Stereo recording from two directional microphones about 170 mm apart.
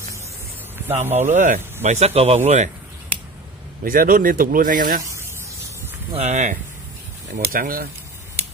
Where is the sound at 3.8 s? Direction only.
55° right (ahead or behind).